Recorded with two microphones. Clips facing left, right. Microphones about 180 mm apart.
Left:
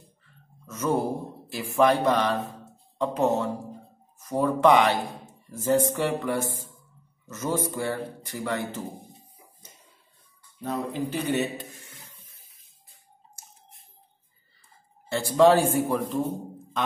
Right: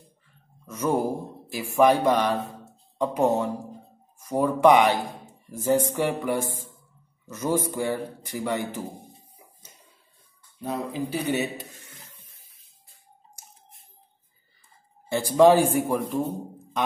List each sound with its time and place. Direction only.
0.7 s speech: 15° right (ahead or behind)
10.6 s speech: 10° right (ahead or behind)
15.0 s speech: 15° right (ahead or behind)